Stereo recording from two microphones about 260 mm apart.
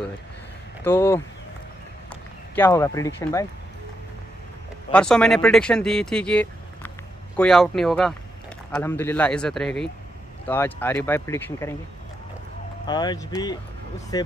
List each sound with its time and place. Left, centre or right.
0.8 s speech: centre
2.5 s speech: centre
4.9 s speech: centre
12.8 s speech: centre